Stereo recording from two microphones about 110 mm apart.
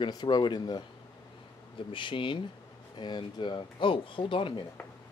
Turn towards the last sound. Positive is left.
turn(degrees=50)  # may be behind; listen again after turning